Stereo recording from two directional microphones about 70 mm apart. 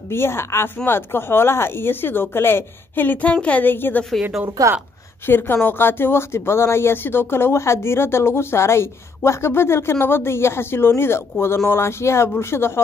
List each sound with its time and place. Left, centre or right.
0.1 s a woman's voice: left; by 3.7 s centre
3.7 s speech: left
4.6 s a woman's voice: right
5.2 s speech: left